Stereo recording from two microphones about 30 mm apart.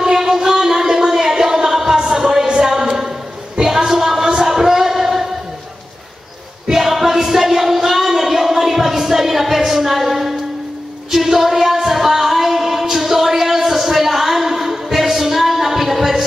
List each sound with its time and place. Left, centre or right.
0.0 s music: centre
2.6 s a sound: centre
4.4 s music: centre
6.7 s music: centre
8.1 s a sound: centre
11.1 s singing: centre